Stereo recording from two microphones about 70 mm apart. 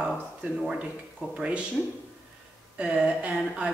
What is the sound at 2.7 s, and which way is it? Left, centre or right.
Speech, centre.